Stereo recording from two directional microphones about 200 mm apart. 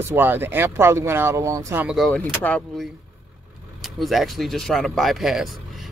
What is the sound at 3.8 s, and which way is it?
Speech, centre (ahead or behind).